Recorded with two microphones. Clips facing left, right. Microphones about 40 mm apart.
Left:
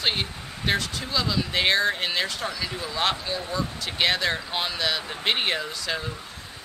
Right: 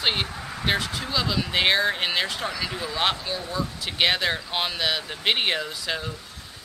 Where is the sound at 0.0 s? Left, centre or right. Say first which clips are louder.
Right 1 dB; centre.